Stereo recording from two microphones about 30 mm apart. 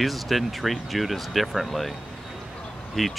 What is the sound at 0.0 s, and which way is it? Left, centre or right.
Speech, centre.